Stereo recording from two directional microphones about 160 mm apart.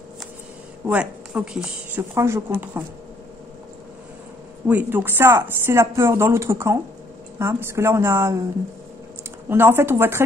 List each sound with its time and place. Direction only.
0.8 s speech: 5° right (ahead or behind)
2.1 s speech: 15° right (ahead or behind)
4.6 s speech: 10° right (ahead or behind)
9.5 s speech: 15° right (ahead or behind)